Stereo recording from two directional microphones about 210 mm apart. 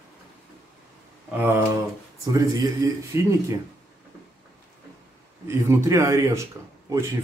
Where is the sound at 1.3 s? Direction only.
10° right (ahead or behind).